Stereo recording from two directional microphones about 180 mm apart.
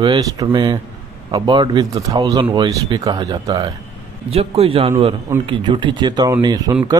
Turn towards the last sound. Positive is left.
turn(degrees=-20)  # may be behind; listen again after turning